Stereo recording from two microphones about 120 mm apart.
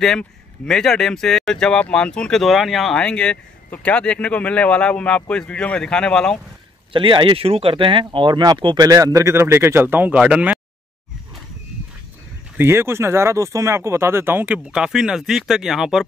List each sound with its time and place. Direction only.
0.0 s speech: 5° left (ahead or behind)
6.9 s speech: 45° right (ahead or behind); by 10.6 s 10° right (ahead or behind)
12.5 s speech: 20° right (ahead or behind); by 16.1 s 5° right (ahead or behind)